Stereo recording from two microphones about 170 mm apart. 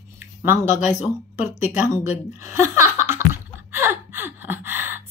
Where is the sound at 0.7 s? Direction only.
45° left (ahead or behind).